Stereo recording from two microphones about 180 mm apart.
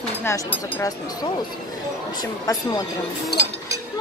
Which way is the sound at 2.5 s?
20° left (ahead or behind).